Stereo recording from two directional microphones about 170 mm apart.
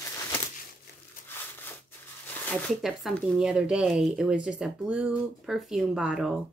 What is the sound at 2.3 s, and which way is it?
Zipper, 10° left (ahead or behind).